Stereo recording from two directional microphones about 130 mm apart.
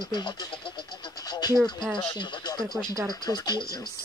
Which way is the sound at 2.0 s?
35° left (ahead or behind).